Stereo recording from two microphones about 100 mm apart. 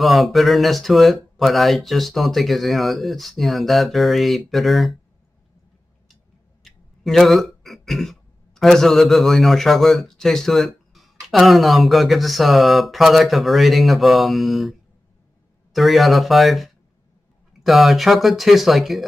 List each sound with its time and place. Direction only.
0.0 s speech: centre (ahead or behind)
6.6 s speech: centre (ahead or behind)